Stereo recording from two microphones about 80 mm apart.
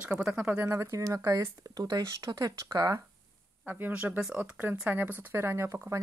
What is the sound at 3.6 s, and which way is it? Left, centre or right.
Speech, centre.